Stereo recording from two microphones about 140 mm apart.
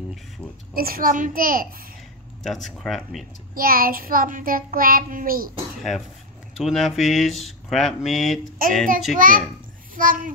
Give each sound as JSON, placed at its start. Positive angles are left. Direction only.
{"t": 0.7, "sound": "child singing", "side_deg": -90}
{"t": 2.4, "sound": "speech", "side_deg": 0}
{"t": 3.5, "sound": "child singing", "side_deg": -90}
{"t": 5.8, "sound": "speech", "side_deg": 0}
{"t": 8.6, "sound": "child singing", "side_deg": -90}
{"t": 9.1, "sound": "a child's voice", "side_deg": -75}